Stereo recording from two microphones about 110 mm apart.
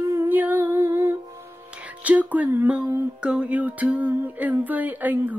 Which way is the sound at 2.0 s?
15° right (ahead or behind).